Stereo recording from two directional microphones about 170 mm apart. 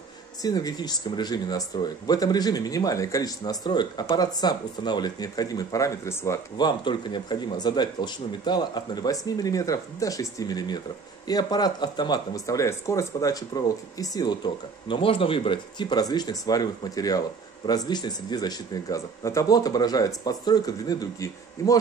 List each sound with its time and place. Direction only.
0.4 s speech: 20° left (ahead or behind)
14.9 s speech: 30° left (ahead or behind)